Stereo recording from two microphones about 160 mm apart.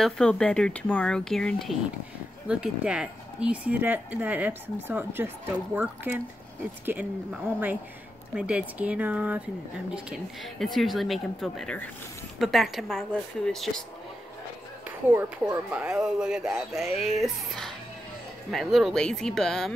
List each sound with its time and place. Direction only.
0.0 s speech: 5° left (ahead or behind)
14.9 s speech: 10° right (ahead or behind)